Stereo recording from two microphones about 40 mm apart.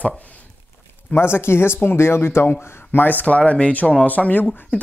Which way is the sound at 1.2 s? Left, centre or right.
Left.